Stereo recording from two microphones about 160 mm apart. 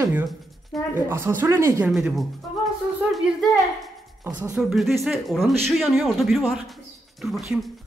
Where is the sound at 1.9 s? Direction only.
Centre (ahead or behind).